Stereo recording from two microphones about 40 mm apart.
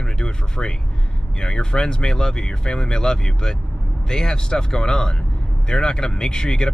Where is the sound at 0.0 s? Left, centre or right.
Centre.